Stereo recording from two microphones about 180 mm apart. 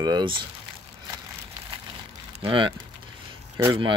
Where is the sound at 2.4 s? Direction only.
30° right (ahead or behind).